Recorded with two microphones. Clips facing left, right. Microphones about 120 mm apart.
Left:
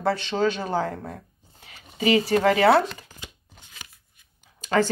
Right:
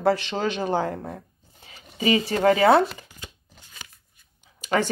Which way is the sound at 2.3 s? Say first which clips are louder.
Right 1 dB; 25° right (ahead or behind).